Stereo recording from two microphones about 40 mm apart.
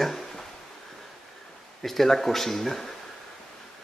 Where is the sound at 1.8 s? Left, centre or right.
Centre.